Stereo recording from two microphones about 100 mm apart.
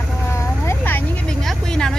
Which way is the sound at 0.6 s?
20° left (ahead or behind).